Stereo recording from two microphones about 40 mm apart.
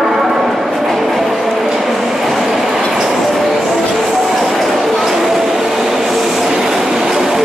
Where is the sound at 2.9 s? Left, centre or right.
Centre.